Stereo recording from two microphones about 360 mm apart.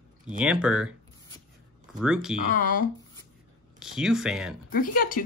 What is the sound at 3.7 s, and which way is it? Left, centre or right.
Speech, centre.